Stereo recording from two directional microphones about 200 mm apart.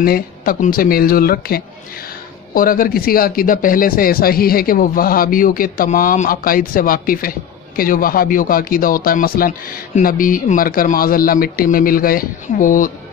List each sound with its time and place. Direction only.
0.0 s speech: 45° left (ahead or behind)